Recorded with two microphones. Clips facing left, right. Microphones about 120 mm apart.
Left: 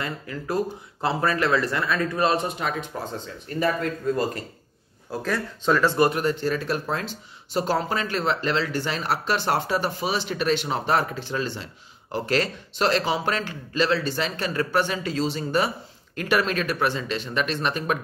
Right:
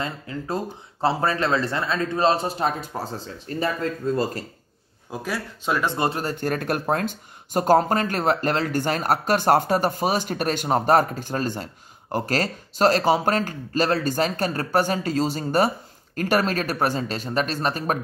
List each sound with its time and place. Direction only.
0.0 s speech: 25° right (ahead or behind)
5.2 s speech: 10° right (ahead or behind)
6.0 s speech: 30° right (ahead or behind)
6.3 s speech: 55° right (ahead or behind)